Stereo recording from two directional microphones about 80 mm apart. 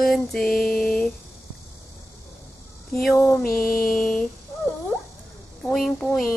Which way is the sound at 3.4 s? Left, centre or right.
Centre.